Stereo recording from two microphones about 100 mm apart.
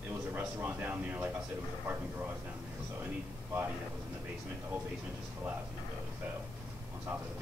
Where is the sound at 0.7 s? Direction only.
15° right (ahead or behind).